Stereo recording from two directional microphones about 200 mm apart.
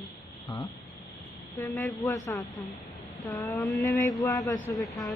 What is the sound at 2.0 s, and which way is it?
Speech, 15° left (ahead or behind).